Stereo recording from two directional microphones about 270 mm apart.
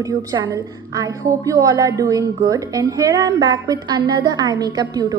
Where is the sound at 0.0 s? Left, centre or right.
Centre.